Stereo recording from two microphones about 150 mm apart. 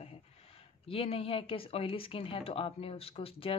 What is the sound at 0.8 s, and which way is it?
Speech, 40° left (ahead or behind).